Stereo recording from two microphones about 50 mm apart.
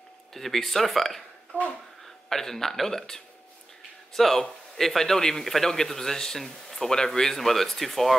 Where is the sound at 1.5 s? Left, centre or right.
Left.